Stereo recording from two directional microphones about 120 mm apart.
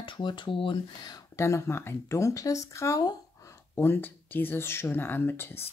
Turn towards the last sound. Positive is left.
turn(degrees=15)  # may be behind; listen again after turning